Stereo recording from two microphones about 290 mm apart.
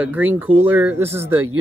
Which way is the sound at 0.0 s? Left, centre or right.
Centre.